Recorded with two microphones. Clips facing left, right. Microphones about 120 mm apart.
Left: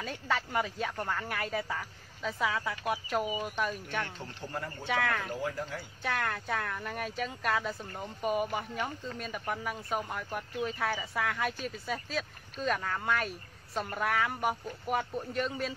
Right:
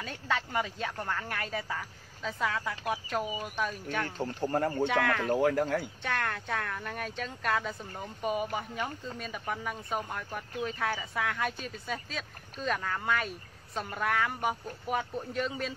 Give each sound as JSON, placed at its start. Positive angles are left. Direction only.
{"t": 0.0, "sound": "speech", "side_deg": 0}
{"t": 4.2, "sound": "speech", "side_deg": -40}
{"t": 4.8, "sound": "speech", "side_deg": 0}
{"t": 5.3, "sound": "speech", "side_deg": -70}
{"t": 6.0, "sound": "speech", "side_deg": 0}